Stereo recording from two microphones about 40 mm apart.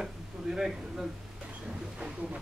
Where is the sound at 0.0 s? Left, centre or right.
Centre.